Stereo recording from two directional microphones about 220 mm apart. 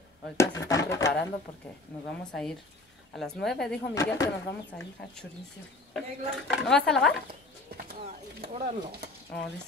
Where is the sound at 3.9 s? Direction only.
15° left (ahead or behind).